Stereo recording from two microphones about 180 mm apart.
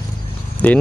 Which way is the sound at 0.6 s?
10° left (ahead or behind).